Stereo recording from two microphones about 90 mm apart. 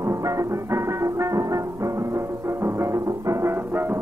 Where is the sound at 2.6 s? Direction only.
30° right (ahead or behind).